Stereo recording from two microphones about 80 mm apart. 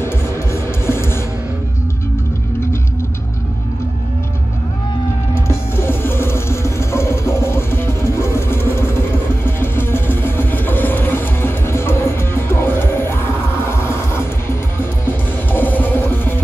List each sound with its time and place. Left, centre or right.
0.0 s music: left
5.3 s music: left
15.5 s music: left